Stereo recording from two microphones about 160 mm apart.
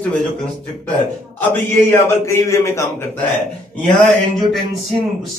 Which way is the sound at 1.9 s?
15° left (ahead or behind).